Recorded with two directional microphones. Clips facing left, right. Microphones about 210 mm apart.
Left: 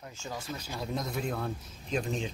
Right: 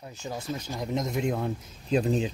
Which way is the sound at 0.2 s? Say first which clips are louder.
Right 5 dB; 15° right (ahead or behind).